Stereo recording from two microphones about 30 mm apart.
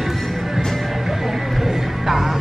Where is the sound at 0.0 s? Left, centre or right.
Centre.